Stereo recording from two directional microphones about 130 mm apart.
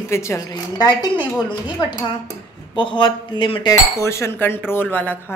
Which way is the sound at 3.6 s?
20° left (ahead or behind).